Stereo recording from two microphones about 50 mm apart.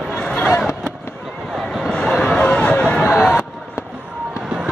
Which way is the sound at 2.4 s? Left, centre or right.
Left.